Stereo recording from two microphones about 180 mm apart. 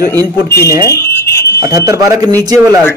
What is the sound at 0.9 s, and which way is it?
Fire alarm, 15° left (ahead or behind).